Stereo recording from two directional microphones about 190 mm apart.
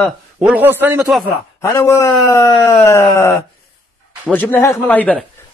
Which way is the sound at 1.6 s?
15° left (ahead or behind).